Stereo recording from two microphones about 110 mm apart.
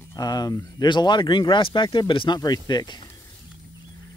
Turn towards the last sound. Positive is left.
turn(degrees=40)  # may be behind; listen again after turning